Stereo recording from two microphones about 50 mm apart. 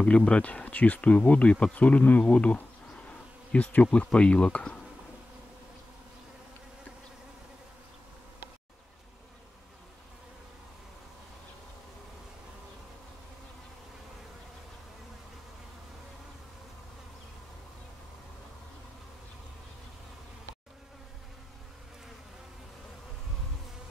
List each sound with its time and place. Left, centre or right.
0.0 s speech: centre